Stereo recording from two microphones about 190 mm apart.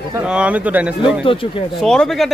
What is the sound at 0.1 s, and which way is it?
Speech, 5° right (ahead or behind).